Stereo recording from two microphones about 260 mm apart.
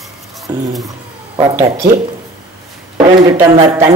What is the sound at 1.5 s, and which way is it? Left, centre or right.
Speech, centre.